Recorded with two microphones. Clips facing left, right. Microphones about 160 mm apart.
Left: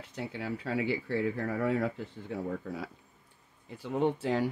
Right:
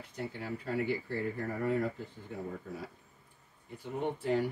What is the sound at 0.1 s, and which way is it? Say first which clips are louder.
Speech: left 2 dB; 90° left.